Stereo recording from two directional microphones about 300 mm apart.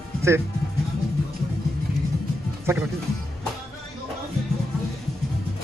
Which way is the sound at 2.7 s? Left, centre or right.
Centre.